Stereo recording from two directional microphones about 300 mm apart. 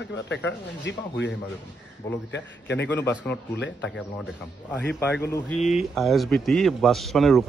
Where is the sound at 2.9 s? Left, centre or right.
Centre.